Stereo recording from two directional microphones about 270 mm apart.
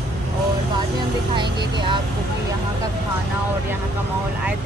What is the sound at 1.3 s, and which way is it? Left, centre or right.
Speech, centre.